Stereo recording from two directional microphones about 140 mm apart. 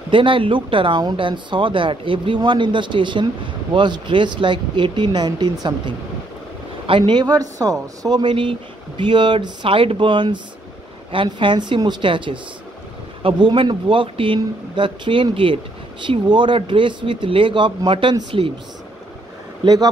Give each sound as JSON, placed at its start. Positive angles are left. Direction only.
{"t": 0.1, "sound": "speech", "side_deg": -40}
{"t": 19.6, "sound": "speech", "side_deg": -30}